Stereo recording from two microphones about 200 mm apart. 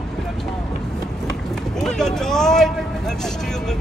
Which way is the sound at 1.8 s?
5° left (ahead or behind).